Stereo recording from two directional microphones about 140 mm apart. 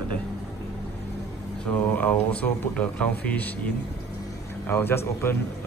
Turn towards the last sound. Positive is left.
turn(degrees=15)  # may be behind; listen again after turning